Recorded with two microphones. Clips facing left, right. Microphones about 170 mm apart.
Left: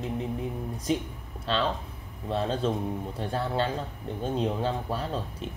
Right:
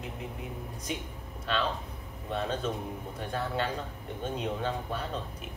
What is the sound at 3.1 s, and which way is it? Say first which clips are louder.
Speech: left 3 dB; 30° left (ahead or behind).